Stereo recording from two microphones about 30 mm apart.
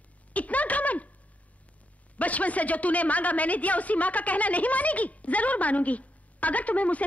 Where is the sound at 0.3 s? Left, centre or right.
Left.